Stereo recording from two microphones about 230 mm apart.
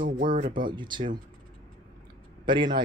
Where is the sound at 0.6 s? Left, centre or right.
Centre.